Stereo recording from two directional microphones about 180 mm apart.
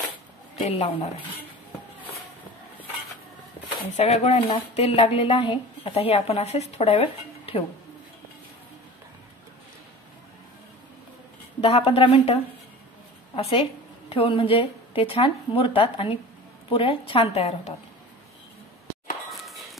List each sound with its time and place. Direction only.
0.7 s speech: 35° left (ahead or behind)
3.9 s speech: 35° left (ahead or behind)
11.6 s speech: 30° left (ahead or behind)